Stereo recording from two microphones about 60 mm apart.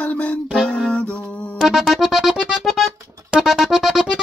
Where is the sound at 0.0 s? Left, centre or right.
Left.